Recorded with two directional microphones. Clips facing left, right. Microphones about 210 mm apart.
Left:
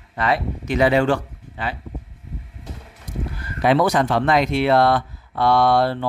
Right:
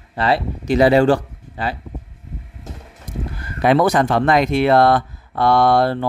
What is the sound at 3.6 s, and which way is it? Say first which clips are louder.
Speech: right 2 dB; 50° right (ahead or behind).